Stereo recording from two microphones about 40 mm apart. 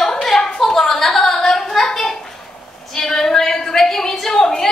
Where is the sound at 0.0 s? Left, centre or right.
Centre.